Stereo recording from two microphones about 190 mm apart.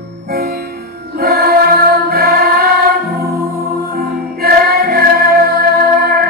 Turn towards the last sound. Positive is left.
turn(degrees=-55)  # may be behind; listen again after turning